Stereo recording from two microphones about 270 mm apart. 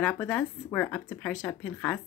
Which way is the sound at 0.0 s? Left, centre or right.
Centre.